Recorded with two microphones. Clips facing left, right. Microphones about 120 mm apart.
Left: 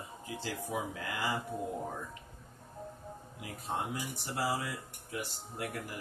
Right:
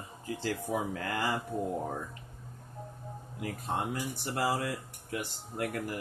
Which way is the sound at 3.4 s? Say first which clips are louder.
Right 4 dB; 60° right (ahead or behind).